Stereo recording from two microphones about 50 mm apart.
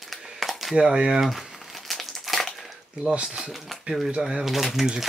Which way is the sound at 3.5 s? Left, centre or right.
Centre.